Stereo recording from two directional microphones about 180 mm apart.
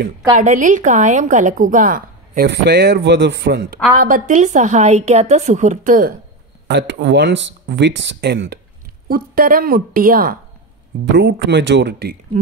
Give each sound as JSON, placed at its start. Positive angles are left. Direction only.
{"t": 0.4, "sound": "a woman's voice", "side_deg": -45}
{"t": 4.0, "sound": "a woman's voice", "side_deg": -50}
{"t": 6.7, "sound": "speech", "side_deg": -75}
{"t": 9.1, "sound": "a woman's voice", "side_deg": -50}
{"t": 11.1, "sound": "speech", "side_deg": -75}